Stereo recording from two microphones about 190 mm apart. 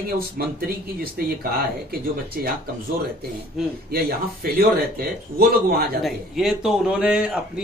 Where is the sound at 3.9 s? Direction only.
55° right (ahead or behind).